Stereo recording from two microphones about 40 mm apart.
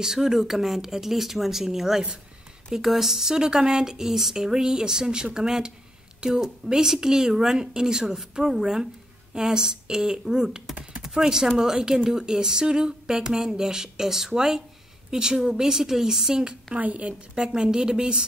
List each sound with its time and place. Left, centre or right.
0.0 s speech: centre
16.7 s a woman's voice: right
17.4 s a woman's voice: right